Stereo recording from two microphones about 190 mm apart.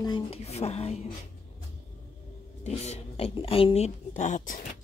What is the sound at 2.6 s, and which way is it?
Speech, 35° left (ahead or behind).